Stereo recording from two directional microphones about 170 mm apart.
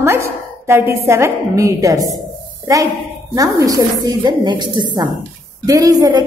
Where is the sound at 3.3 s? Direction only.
20° right (ahead or behind).